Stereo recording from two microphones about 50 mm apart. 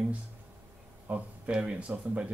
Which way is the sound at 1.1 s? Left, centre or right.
Right.